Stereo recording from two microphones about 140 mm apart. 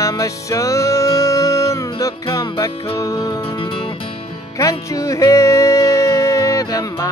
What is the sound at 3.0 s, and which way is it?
Music, 25° left (ahead or behind).